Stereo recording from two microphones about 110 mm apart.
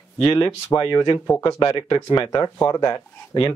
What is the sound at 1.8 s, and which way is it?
Speech, 50° left (ahead or behind).